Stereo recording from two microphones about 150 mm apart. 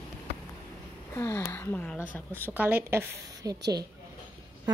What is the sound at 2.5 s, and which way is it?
A woman's voice, 10° right (ahead or behind).